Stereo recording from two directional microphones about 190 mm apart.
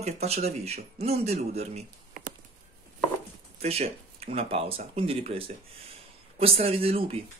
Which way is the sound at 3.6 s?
30° right (ahead or behind).